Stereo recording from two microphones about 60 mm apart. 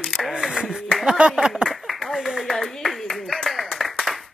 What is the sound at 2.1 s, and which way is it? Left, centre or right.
Clapping, centre.